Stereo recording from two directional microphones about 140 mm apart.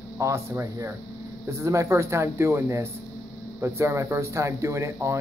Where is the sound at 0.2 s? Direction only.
20° right (ahead or behind).